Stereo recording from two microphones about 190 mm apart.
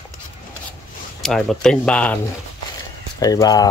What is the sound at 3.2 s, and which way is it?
Speech, 20° left (ahead or behind).